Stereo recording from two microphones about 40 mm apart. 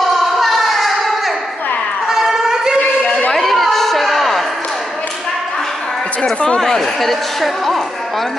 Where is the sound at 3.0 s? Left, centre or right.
Left.